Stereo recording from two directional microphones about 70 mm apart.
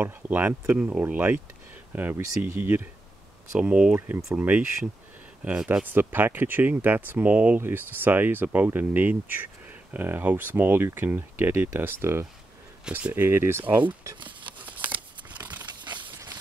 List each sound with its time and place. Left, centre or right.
0.0 s speech: right
0.7 s speech: centre
1.0 s speech: right
3.5 s speech: centre
5.7 s speech: right
14.6 s scissors: right
15.9 s a sound: right